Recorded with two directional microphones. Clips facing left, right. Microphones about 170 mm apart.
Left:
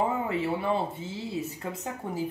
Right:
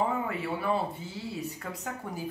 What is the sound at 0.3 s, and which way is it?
Speech, 25° left (ahead or behind).